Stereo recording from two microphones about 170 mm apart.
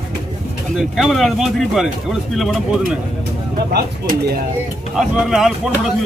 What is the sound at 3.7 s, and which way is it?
Speech, 65° right (ahead or behind).